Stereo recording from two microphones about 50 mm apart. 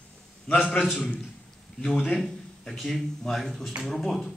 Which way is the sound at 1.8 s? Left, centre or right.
Centre.